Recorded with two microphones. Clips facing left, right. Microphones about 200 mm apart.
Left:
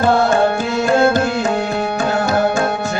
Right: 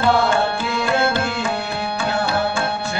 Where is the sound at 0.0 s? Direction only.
45° left (ahead or behind).